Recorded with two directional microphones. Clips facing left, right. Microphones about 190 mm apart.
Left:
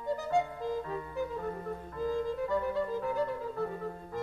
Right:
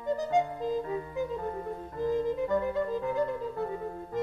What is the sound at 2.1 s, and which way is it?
Music, 20° right (ahead or behind).